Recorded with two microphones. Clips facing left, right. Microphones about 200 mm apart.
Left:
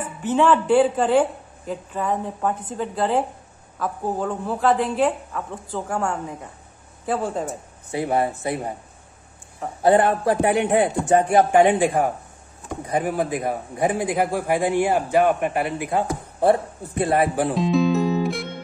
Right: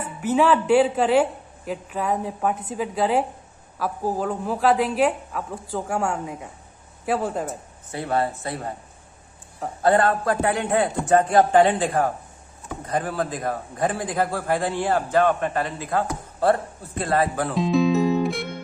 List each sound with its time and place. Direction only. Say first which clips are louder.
0.2 s a woman's voice: left 1 dB; 5° right (ahead or behind)
7.9 s speech: left 2 dB; 20° left (ahead or behind)
9.8 s a man's voice: left 2 dB; 20° left (ahead or behind)
17.6 s music: right 2 dB; centre (ahead or behind)